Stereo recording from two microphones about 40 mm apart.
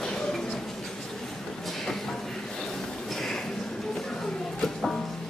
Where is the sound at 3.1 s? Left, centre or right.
Centre.